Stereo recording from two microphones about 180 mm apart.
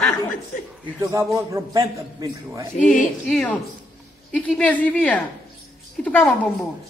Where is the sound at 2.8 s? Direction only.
45° left (ahead or behind).